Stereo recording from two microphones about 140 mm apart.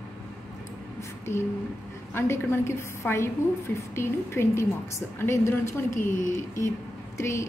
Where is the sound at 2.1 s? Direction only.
20° left (ahead or behind).